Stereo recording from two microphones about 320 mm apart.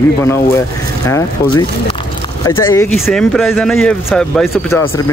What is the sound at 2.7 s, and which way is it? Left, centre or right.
Speech, centre.